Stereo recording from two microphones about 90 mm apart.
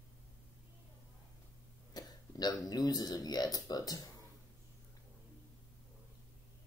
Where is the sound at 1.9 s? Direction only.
45° left (ahead or behind).